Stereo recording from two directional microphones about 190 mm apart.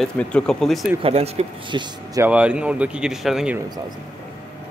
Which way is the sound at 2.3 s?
5° right (ahead or behind).